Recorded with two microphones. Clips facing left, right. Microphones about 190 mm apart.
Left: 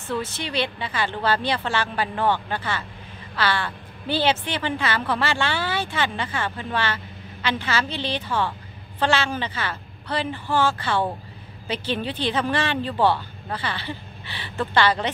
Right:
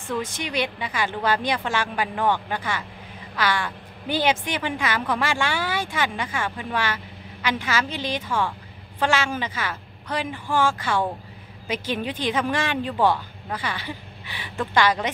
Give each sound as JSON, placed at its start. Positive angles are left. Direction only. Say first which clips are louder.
{"t": 0.0, "sound": "a woman's voice", "louder": "even", "side_deg": -10}